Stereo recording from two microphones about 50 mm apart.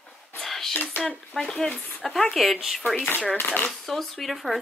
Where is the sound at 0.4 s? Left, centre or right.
Centre.